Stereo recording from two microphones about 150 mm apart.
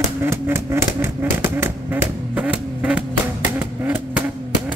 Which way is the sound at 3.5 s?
10° right (ahead or behind).